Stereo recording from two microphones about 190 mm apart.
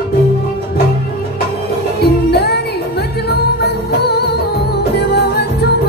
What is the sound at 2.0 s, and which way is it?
Music, 55° left (ahead or behind).